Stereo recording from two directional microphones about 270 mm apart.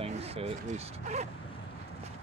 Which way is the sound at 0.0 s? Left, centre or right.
Right.